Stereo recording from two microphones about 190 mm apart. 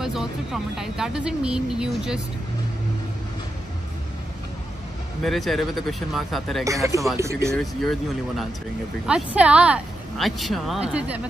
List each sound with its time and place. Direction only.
0.0 s speech: centre (ahead or behind)
5.2 s speech: centre (ahead or behind)
6.6 s speech: 15° right (ahead or behind)
7.5 s speech: centre (ahead or behind)